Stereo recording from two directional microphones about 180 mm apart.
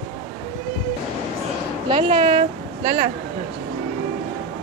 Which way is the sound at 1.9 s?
30° right (ahead or behind).